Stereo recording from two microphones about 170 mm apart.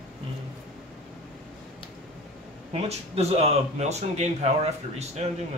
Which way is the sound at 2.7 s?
40° right (ahead or behind).